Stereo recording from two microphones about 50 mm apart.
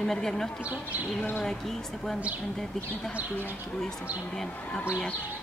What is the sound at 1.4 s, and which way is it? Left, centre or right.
Speech, centre.